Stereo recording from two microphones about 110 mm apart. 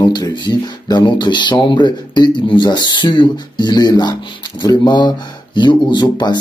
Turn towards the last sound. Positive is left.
turn(degrees=45)  # may be behind; listen again after turning